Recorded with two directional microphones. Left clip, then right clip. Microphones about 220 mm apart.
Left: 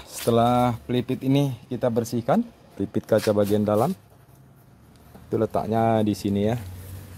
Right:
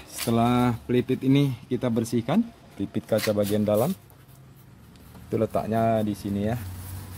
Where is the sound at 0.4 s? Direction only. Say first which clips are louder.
Left 3 dB; 10° left (ahead or behind).